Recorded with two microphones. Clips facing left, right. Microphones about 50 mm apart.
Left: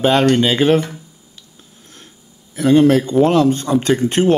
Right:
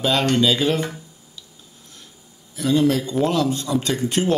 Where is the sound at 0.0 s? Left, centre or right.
Left.